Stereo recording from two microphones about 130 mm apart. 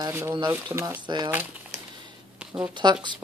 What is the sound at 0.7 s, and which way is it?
Speech, 25° right (ahead or behind).